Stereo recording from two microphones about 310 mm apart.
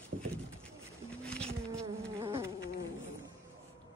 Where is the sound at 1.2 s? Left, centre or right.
Centre.